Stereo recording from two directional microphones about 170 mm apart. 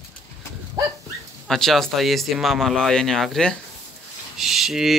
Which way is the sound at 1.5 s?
Centre (ahead or behind).